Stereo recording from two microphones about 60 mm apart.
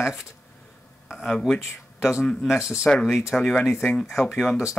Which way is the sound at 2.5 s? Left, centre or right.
Left.